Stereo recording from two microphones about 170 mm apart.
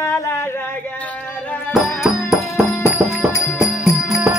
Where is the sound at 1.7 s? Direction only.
Centre (ahead or behind).